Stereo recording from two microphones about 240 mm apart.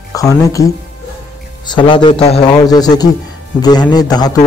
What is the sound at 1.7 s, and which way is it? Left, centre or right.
Speech, centre.